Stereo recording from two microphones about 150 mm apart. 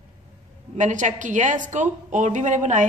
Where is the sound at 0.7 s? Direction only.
55° right (ahead or behind).